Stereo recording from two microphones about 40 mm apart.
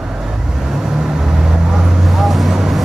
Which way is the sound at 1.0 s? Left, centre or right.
Centre.